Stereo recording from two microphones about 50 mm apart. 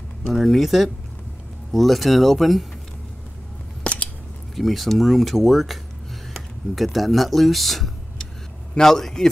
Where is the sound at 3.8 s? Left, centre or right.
Centre.